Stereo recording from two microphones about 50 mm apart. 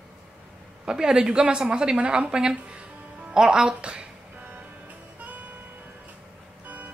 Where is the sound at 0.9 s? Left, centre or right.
Centre.